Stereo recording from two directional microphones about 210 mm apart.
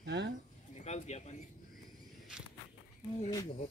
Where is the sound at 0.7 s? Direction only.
35° left (ahead or behind).